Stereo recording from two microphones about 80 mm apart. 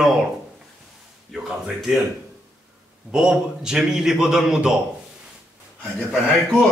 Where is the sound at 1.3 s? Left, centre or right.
Centre.